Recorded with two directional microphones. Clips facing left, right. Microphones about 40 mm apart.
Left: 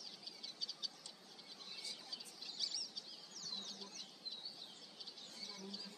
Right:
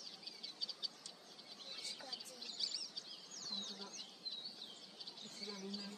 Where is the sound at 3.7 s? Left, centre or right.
Centre.